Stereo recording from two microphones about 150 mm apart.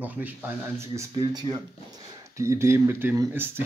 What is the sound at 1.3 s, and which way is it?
Speech, 30° right (ahead or behind).